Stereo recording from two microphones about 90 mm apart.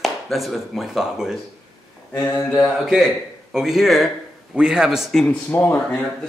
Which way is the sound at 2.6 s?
Centre (ahead or behind).